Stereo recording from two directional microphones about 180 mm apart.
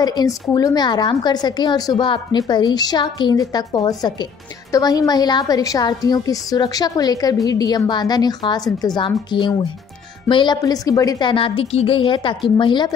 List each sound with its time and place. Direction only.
0.0 s a woman's voice: 20° left (ahead or behind)